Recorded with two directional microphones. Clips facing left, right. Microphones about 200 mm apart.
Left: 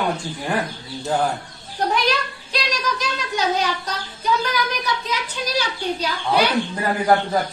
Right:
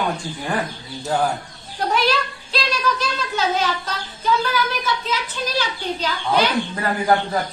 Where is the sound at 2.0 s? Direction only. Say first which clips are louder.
Right 2 dB; 15° left (ahead or behind).